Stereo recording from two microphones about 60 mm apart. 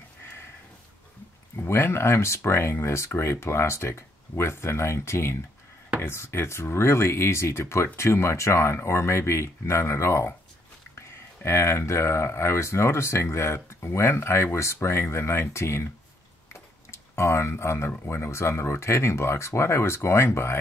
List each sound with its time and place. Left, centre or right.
1.6 s speech: left